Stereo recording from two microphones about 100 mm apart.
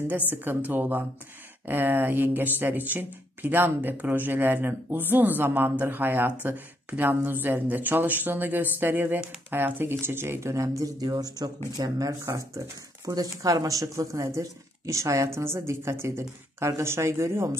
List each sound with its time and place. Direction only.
0.1 s speech: 20° right (ahead or behind)